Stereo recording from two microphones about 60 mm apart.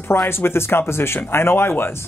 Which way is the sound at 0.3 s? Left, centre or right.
Left.